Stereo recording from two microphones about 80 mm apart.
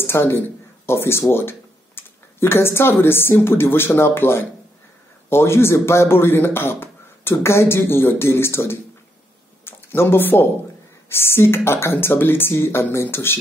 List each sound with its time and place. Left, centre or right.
0.0 s speech: left